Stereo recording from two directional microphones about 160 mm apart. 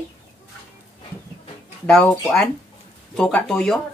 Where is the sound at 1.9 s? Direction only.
5° left (ahead or behind).